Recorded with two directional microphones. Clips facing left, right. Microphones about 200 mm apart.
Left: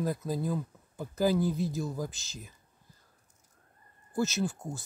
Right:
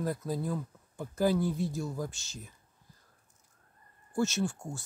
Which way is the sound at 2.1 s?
90° left.